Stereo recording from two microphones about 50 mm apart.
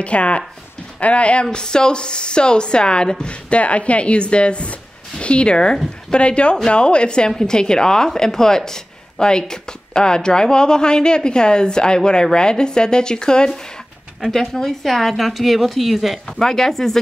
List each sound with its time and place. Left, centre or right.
0.0 s a woman's voice: left; by 16.2 s centre
16.3 s a woman's voice: centre